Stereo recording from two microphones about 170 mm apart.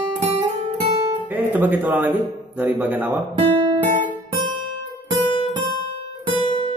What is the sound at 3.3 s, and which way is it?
Guitar, 30° right (ahead or behind).